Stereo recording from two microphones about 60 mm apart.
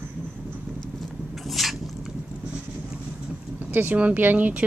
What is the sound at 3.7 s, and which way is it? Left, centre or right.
Speech, right.